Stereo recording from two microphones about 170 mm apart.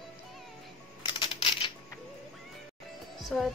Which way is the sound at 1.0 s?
30° left (ahead or behind).